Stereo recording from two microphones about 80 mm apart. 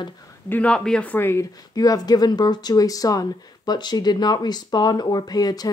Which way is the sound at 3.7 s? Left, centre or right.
Left.